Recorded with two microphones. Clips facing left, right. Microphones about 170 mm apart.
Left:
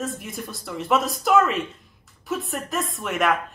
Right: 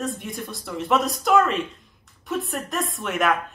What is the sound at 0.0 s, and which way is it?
Speech, centre (ahead or behind).